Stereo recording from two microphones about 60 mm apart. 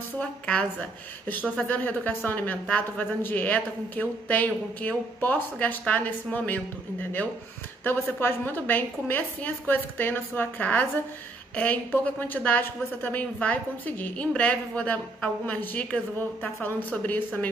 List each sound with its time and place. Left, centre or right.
0.2 s a woman's voice: left